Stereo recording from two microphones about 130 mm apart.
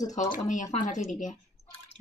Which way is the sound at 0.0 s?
65° left (ahead or behind).